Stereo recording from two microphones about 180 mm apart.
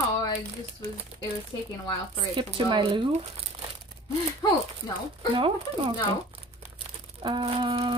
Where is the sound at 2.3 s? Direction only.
25° right (ahead or behind).